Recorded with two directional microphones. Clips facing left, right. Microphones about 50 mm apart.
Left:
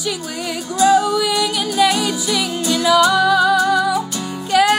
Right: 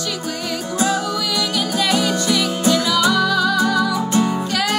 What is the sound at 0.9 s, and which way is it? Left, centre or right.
Music, left.